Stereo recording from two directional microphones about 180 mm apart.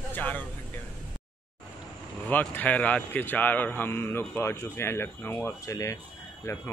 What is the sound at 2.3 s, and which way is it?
A man's voice, 10° left (ahead or behind).